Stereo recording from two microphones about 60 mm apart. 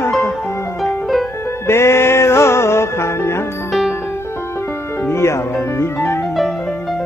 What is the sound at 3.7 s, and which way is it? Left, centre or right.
Music, centre.